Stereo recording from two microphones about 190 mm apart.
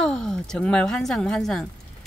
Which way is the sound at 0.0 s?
5° left (ahead or behind).